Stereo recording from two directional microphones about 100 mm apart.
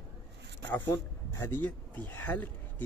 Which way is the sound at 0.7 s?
30° left (ahead or behind).